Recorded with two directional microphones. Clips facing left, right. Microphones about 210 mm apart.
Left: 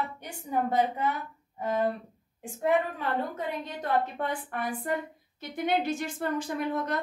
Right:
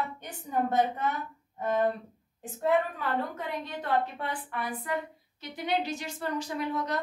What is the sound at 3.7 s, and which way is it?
Speech, 45° left (ahead or behind).